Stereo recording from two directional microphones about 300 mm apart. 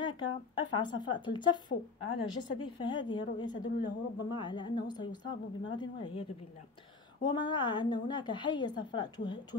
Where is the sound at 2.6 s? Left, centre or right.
Centre.